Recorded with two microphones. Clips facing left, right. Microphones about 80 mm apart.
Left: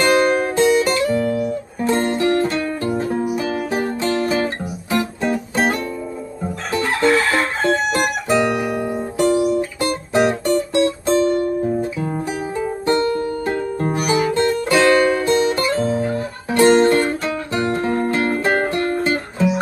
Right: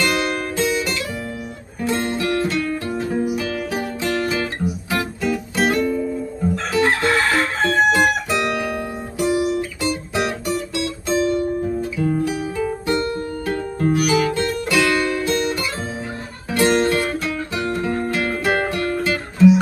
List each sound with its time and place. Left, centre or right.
0.0 s music: left
9.2 s guitar: left
12.0 s music: left